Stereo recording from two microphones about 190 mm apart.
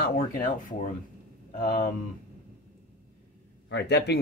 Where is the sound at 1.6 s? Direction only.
25° left (ahead or behind).